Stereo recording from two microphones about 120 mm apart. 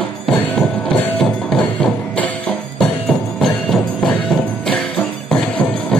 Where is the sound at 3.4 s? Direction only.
5° left (ahead or behind).